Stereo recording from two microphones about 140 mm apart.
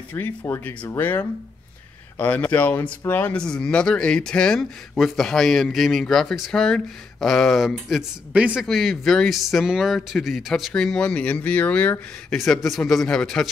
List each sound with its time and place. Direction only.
0.1 s speech: 15° left (ahead or behind); by 8.6 s 10° right (ahead or behind)
8.6 s speech: centre (ahead or behind)